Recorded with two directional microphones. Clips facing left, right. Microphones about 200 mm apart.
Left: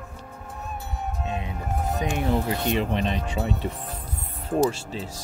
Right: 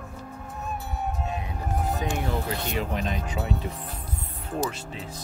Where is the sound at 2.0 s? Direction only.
20° left (ahead or behind).